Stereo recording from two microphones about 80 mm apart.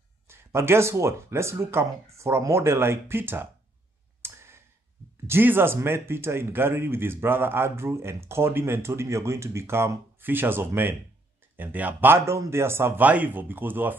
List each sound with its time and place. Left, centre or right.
0.3 s speech: right
4.2 s clicking: right
5.2 s speech: right
12.3 s speech: right
13.0 s speech: right